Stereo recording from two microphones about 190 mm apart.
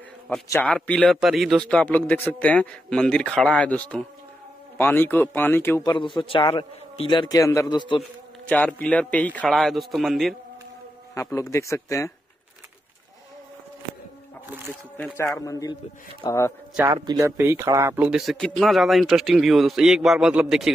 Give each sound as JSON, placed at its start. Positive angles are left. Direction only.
{"t": 0.5, "sound": "speech", "side_deg": 10}
{"t": 5.9, "sound": "a man's voice", "side_deg": 25}
{"t": 8.5, "sound": "speech", "side_deg": 10}
{"t": 11.3, "sound": "speech", "side_deg": 15}
{"t": 15.0, "sound": "speech", "side_deg": 15}
{"t": 16.9, "sound": "speech", "side_deg": -20}